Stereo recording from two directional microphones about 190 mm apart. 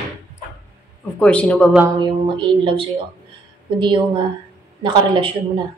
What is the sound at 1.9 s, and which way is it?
Speech, 25° right (ahead or behind).